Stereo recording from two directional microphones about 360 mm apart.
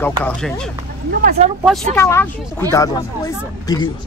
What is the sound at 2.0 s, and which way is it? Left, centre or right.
Speech, centre.